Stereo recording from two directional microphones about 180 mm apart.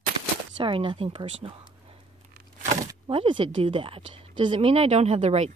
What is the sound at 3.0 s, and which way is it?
A woman's voice, 30° right (ahead or behind).